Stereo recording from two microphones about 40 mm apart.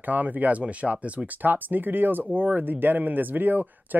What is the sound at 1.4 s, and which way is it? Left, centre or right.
Speech, right.